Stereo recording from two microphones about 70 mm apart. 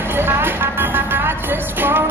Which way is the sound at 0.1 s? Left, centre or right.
Right.